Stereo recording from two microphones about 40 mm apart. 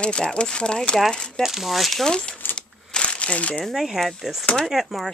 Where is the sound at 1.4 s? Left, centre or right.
Centre.